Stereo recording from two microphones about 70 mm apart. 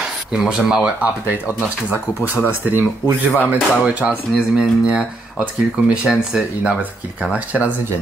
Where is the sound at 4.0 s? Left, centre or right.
Centre.